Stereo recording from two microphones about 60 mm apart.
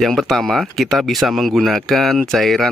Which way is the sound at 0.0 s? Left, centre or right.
Centre.